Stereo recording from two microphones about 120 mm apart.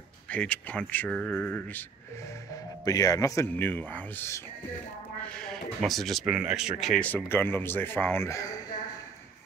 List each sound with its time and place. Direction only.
0.3 s speech: 10° left (ahead or behind)
2.5 s speech: 30° left (ahead or behind)
5.3 s speech: 5° left (ahead or behind)
7.0 s speech: 10° left (ahead or behind)